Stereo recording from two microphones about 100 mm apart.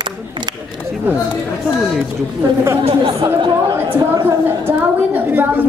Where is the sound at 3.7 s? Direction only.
30° right (ahead or behind).